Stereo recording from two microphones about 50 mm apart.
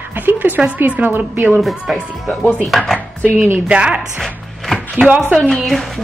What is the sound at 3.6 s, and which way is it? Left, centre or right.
Speech, right.